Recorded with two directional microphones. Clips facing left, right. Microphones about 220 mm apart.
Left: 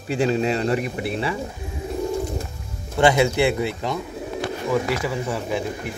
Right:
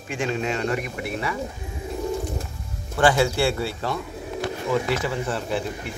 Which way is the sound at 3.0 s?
20° left (ahead or behind).